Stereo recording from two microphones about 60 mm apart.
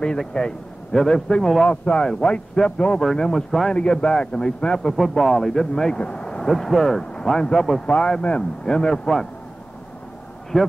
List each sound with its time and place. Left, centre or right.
0.2 s a man's voice: centre
3.7 s a man's voice: centre
4.7 s a man's voice: centre
6.4 s a man's voice: centre
10.5 s speech: centre